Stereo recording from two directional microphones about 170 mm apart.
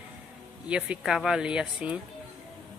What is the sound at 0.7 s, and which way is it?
Speech, 5° right (ahead or behind).